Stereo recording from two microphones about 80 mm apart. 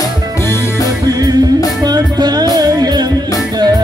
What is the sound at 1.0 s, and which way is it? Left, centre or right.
Music, right.